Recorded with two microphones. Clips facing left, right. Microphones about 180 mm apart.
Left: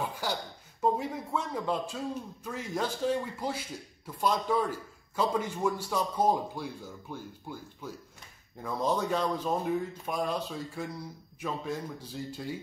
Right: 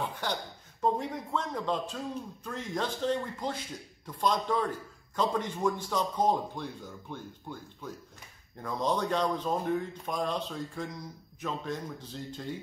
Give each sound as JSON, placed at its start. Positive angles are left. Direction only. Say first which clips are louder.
{"t": 0.0, "sound": "a man's voice", "louder": "even", "side_deg": 5}